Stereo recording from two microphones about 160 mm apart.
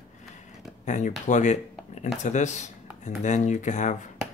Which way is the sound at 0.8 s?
50° left (ahead or behind).